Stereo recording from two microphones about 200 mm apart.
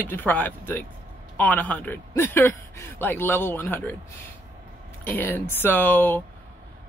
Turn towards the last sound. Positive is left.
turn(degrees=10)  # may be behind; listen again after turning